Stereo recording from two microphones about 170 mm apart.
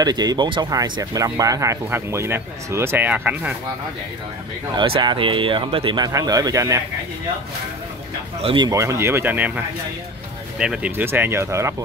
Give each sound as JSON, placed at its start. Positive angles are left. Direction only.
{"t": 0.0, "sound": "speech", "side_deg": -25}
{"t": 4.7, "sound": "speech", "side_deg": -30}
{"t": 8.4, "sound": "a man's voice", "side_deg": -35}
{"t": 8.6, "sound": "speech", "side_deg": -15}
{"t": 10.6, "sound": "speech", "side_deg": -5}